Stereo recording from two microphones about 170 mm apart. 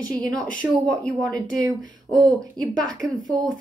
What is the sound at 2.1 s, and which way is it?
Speech, 25° right (ahead or behind).